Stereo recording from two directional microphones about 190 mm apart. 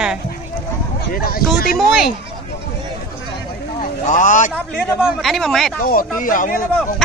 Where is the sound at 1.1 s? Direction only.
50° left (ahead or behind).